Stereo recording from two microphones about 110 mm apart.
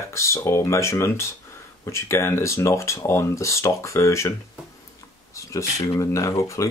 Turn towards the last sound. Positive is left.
turn(degrees=25)  # may be behind; listen again after turning